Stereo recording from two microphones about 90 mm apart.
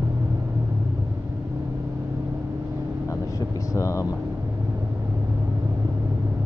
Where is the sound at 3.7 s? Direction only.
35° left (ahead or behind).